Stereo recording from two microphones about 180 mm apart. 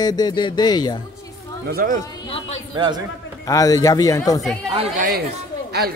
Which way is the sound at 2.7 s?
25° right (ahead or behind).